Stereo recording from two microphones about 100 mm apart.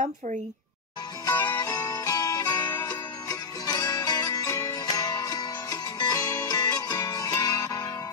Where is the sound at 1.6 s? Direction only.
35° left (ahead or behind).